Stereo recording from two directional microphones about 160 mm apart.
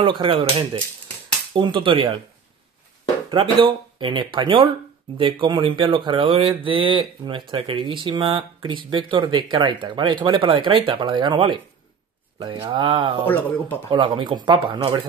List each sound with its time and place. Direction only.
0.0 s speech: 30° right (ahead or behind)
3.3 s speech: 30° right (ahead or behind)
13.3 s speech: 10° left (ahead or behind)
13.8 s speech: 30° right (ahead or behind)